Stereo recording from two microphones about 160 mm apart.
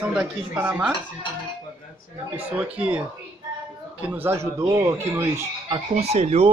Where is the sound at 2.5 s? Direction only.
10° right (ahead or behind).